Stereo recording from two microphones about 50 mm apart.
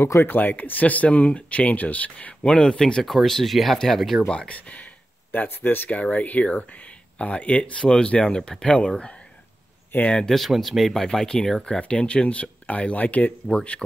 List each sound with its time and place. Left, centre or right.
0.2 s speech: left; by 4.2 s centre
4.5 s a sound: left
5.5 s speech: left
5.9 s speech: left
10.2 s speech: centre
11.2 s speech: centre; by 13.6 s left
13.6 s speech: centre